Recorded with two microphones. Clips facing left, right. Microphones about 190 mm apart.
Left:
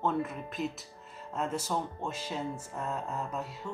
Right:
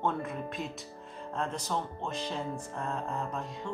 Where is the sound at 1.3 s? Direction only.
5° left (ahead or behind).